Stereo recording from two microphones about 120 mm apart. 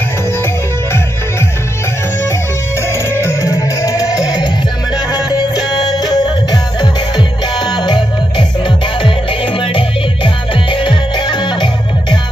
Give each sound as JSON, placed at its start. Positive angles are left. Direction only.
{"t": 2.9, "sound": "music", "side_deg": 20}
{"t": 5.8, "sound": "music", "side_deg": 35}